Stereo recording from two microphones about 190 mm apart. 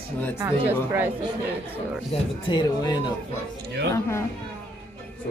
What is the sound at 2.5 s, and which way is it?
Speech, 20° left (ahead or behind).